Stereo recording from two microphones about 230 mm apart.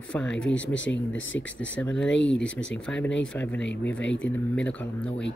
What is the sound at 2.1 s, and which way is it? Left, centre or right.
Speech, left.